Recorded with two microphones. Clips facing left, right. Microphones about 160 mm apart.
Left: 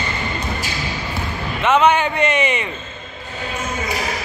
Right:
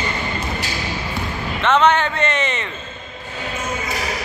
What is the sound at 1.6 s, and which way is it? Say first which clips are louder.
A man's voice: left 1 dB; 10° left (ahead or behind).